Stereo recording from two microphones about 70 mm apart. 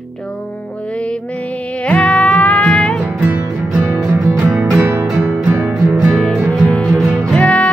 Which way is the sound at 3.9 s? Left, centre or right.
Right.